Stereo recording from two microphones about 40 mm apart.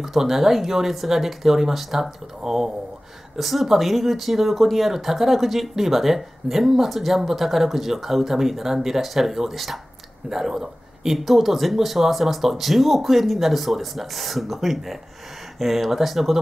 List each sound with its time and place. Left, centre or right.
0.0 s speech: centre